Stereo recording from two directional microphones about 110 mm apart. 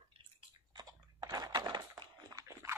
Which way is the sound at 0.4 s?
40° right (ahead or behind).